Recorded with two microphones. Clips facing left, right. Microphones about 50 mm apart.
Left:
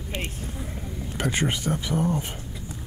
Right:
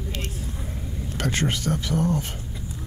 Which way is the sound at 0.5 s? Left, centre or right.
Centre.